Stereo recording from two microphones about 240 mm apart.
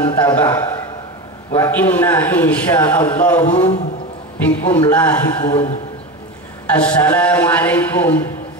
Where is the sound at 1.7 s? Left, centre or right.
Centre.